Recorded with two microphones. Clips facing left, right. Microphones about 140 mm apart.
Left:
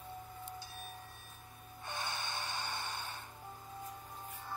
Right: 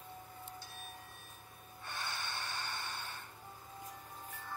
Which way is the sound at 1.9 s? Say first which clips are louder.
Left 2 dB; 15° left (ahead or behind).